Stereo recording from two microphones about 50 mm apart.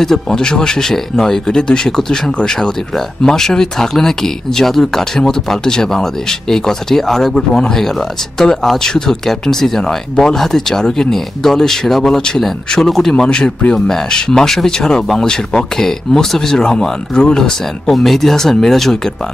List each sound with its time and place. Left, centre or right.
0.0 s speech: centre